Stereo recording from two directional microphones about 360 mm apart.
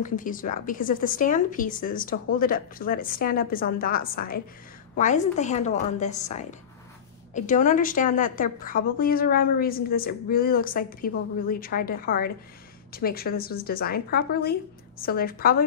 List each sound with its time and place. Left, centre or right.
0.0 s a woman's voice: left